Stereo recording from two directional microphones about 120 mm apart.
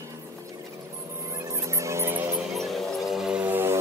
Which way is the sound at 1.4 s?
25° right (ahead or behind).